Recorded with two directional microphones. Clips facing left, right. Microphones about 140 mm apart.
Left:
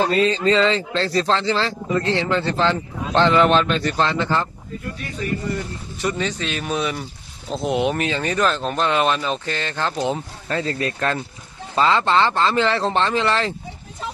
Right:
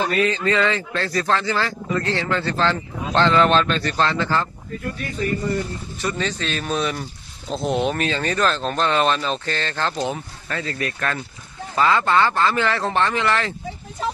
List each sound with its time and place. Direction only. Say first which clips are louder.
0.0 s speech: left 3 dB; 30° left (ahead or behind)
5.9 s speech: left 2 dB; 15° left (ahead or behind)